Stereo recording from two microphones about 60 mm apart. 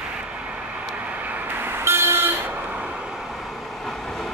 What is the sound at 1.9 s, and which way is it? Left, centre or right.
Vehicle, right.